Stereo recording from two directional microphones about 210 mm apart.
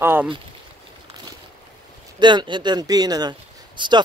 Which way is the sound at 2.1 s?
20° right (ahead or behind).